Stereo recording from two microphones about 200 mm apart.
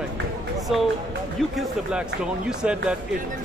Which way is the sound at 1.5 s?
5° right (ahead or behind).